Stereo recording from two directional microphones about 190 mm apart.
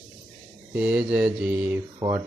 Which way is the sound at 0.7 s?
5° right (ahead or behind).